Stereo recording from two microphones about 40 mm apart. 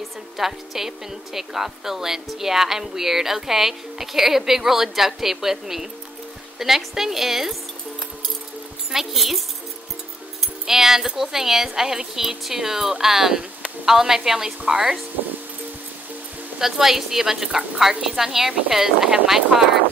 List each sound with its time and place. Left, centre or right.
0.4 s speech: centre
8.9 s speech: centre
10.7 s speech: centre
16.5 s speech: centre